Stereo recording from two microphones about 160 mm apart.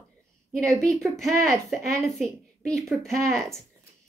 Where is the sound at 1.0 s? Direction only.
Centre (ahead or behind).